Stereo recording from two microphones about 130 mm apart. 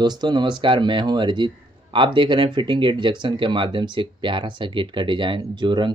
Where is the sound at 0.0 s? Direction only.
35° right (ahead or behind).